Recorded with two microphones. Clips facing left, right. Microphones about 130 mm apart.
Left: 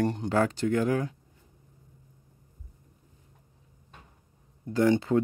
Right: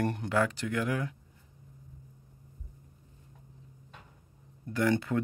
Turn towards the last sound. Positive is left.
turn(degrees=25)  # may be behind; listen again after turning